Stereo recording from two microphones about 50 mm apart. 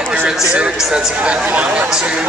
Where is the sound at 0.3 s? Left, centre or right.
Centre.